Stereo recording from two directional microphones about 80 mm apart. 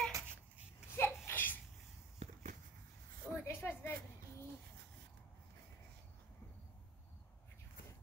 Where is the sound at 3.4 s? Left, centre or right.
Left.